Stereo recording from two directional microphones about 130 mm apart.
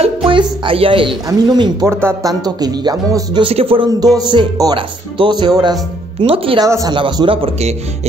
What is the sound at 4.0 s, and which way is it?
Speech, 30° right (ahead or behind).